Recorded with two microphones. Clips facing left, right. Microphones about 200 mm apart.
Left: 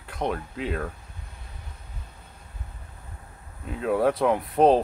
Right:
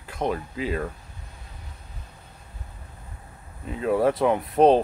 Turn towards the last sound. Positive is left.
turn(degrees=0)  # may be behind; listen again after turning